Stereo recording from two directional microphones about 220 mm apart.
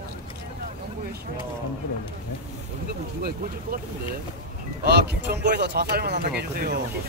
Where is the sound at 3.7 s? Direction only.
40° right (ahead or behind).